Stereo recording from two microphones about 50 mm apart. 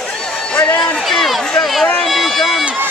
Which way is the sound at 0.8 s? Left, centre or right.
Centre.